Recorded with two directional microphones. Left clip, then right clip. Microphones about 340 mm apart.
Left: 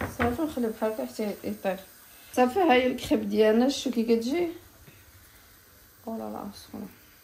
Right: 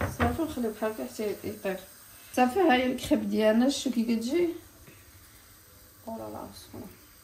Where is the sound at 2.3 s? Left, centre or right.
Centre.